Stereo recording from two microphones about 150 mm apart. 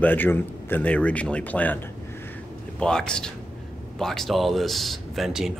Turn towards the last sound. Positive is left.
turn(degrees=0)  # may be behind; listen again after turning